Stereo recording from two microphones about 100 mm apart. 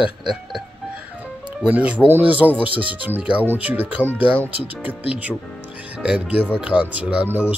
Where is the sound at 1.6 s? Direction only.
10° right (ahead or behind).